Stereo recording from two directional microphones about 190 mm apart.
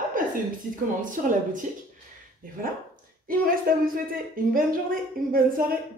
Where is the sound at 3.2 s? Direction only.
50° right (ahead or behind).